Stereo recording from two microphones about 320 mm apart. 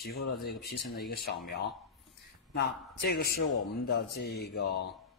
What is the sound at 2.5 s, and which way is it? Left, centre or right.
Speech, left.